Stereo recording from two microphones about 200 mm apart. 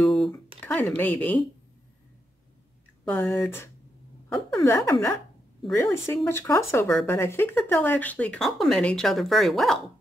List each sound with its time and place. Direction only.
0.0 s a sound: centre (ahead or behind)
0.6 s speech: 10° left (ahead or behind)
3.1 s speech: 10° left (ahead or behind)